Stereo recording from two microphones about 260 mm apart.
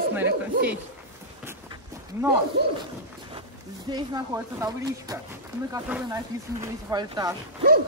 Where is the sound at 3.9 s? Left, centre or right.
Centre.